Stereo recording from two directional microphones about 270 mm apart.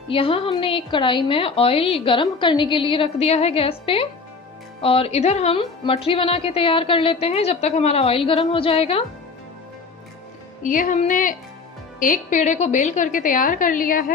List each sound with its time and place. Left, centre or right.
0.1 s a woman's voice: centre
10.6 s a woman's voice: left